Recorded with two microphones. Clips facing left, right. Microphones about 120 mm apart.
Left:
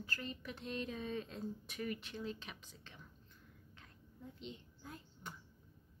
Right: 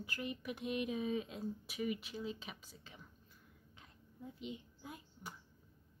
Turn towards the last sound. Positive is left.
turn(degrees=-10)  # may be behind; listen again after turning